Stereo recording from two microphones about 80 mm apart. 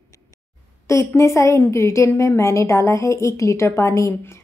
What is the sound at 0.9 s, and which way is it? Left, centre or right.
A woman's voice, left.